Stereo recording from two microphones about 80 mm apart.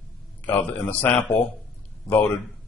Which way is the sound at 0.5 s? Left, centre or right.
Left.